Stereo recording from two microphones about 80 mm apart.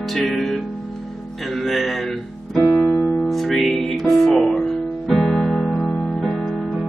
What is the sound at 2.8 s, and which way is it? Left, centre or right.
Music, centre.